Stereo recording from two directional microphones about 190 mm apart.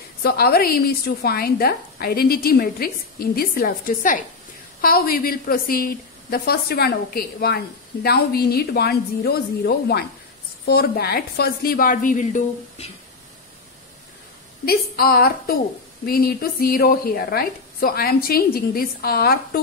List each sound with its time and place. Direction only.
0.2 s a woman's voice: 55° left (ahead or behind); by 12.9 s 35° left (ahead or behind)
14.7 s a woman's voice: 55° left (ahead or behind)